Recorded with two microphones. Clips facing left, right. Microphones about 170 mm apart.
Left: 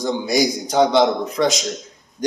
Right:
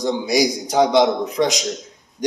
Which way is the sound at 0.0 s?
15° right (ahead or behind).